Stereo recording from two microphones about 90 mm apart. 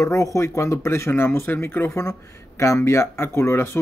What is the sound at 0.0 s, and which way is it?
Speech, 35° left (ahead or behind).